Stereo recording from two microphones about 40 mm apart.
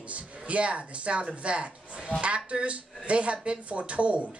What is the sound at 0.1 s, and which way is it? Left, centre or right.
Speech, right.